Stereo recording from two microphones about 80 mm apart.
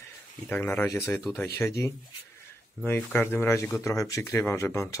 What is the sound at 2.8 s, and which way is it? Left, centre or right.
Speech, left.